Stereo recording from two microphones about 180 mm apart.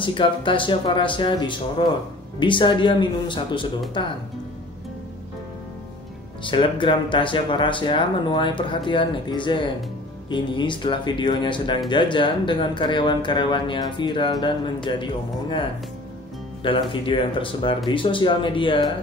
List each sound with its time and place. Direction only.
0.0 s speech: 25° left (ahead or behind)
6.4 s speech: 25° left (ahead or behind)
16.6 s speech: 30° left (ahead or behind)